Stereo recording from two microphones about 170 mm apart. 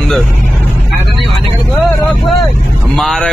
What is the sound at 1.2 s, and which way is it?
Vehicle, centre (ahead or behind).